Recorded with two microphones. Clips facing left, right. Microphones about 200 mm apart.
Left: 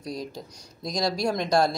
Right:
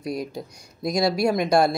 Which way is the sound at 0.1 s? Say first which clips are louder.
Right 4 dB; 60° right (ahead or behind).